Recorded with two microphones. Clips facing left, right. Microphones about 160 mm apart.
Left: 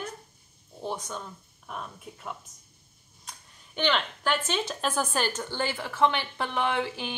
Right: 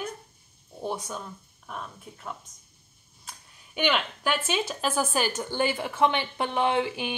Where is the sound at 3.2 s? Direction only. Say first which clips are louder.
Even; 10° right (ahead or behind).